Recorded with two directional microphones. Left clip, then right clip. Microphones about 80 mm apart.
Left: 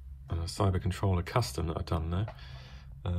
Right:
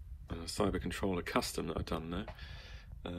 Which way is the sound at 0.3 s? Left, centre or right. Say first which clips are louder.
Left 2 dB; left.